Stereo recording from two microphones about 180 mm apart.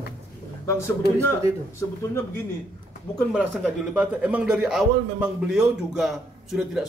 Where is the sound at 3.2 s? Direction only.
5° right (ahead or behind).